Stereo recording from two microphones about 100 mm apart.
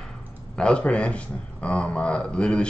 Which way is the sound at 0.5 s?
10° left (ahead or behind).